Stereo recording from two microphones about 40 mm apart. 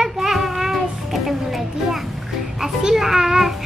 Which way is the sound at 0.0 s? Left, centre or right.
Centre.